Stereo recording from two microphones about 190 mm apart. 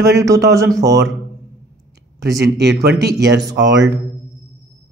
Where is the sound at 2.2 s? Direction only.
65° right (ahead or behind).